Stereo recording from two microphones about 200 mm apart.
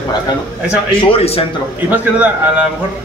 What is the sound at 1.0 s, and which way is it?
Speech, 30° left (ahead or behind).